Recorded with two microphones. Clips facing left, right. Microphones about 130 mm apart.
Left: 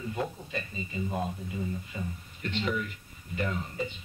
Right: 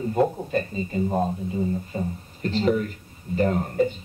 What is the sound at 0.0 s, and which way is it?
A man's voice, 45° right (ahead or behind).